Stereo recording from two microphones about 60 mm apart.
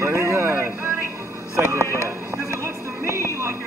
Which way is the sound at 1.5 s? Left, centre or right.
Right.